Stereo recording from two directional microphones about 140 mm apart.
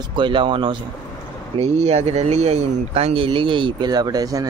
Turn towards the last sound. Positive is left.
turn(degrees=-25)  # may be behind; listen again after turning